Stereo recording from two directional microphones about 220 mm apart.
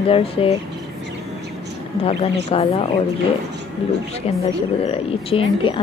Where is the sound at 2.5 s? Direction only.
25° left (ahead or behind).